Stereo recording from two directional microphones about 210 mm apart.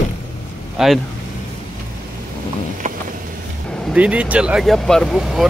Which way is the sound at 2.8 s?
40° right (ahead or behind).